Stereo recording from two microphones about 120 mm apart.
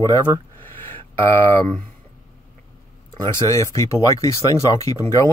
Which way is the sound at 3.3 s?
25° left (ahead or behind).